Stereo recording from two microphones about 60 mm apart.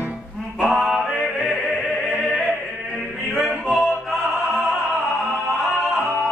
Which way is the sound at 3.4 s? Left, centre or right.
Centre.